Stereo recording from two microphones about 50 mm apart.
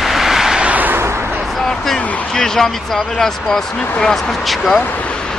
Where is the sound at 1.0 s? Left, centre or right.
Right.